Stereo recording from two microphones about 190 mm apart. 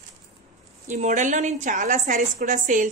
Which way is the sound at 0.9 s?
40° right (ahead or behind).